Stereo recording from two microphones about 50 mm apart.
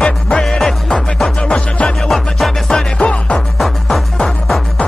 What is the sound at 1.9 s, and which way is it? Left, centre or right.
Music, centre.